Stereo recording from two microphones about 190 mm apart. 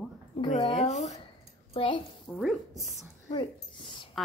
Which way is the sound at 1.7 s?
25° left (ahead or behind).